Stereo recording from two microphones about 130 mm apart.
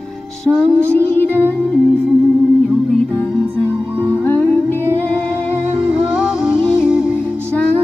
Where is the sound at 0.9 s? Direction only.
15° left (ahead or behind).